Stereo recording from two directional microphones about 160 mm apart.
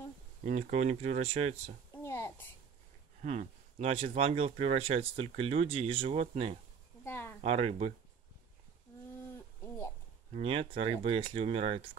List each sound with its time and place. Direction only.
0.6 s speech: 45° right (ahead or behind)
1.9 s a sound: 15° left (ahead or behind)
3.2 s speech: 50° right (ahead or behind)
7.1 s a sound: 15° left (ahead or behind)
7.4 s speech: 40° right (ahead or behind)
10.3 s speech: 35° right (ahead or behind)